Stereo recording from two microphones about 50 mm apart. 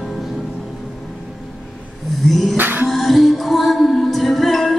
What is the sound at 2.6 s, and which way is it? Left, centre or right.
Music, right.